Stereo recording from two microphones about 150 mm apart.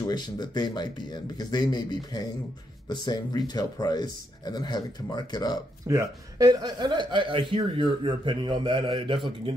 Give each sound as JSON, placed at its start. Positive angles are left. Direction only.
{"t": 0.0, "sound": "speech", "side_deg": 30}
{"t": 5.9, "sound": "speech", "side_deg": -20}